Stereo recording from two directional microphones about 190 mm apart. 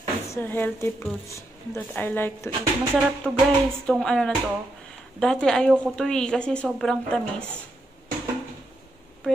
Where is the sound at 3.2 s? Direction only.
Centre (ahead or behind).